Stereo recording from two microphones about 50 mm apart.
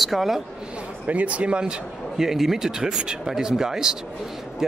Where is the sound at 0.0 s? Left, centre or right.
Centre.